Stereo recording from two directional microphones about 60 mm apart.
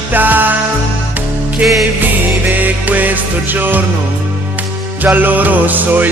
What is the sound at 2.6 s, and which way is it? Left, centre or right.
Music, right.